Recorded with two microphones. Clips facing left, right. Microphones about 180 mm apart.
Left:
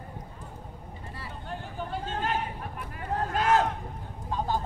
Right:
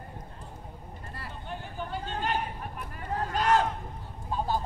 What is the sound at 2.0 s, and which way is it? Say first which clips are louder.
Chatter: even; centre (ahead or behind).